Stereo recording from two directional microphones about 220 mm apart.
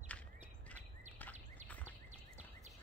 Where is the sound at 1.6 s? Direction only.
30° right (ahead or behind).